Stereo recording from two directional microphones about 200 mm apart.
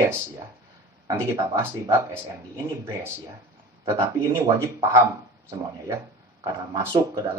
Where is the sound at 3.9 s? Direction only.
15° right (ahead or behind).